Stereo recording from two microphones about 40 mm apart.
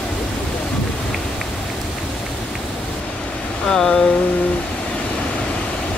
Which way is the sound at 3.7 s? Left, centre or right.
Centre.